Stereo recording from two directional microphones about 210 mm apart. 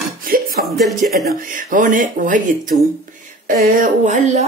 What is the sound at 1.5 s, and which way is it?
Speech, 40° right (ahead or behind).